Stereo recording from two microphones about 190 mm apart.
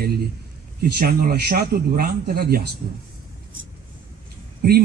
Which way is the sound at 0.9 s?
50° right (ahead or behind).